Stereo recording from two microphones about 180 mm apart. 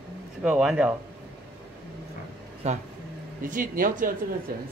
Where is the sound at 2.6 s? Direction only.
40° right (ahead or behind).